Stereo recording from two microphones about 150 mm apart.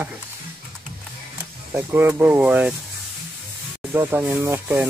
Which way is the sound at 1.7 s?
15° right (ahead or behind).